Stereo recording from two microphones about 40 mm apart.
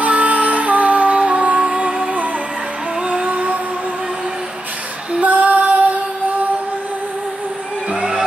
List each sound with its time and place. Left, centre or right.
0.0 s music: right
3.0 s music: right
3.3 s music: right
5.2 s female singing: right